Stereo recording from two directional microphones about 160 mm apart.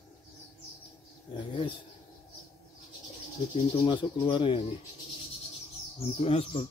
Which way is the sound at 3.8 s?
30° left (ahead or behind).